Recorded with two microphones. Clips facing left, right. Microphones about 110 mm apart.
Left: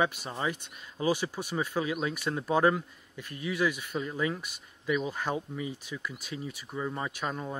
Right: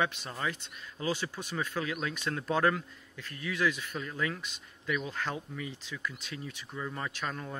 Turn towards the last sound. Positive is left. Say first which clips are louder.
# left 3 dB
turn(degrees=15)  # may be behind; listen again after turning